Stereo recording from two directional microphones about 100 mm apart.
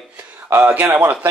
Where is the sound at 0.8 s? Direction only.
20° right (ahead or behind).